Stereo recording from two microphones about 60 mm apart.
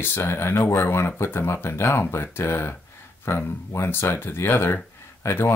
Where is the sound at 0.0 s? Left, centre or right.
Left.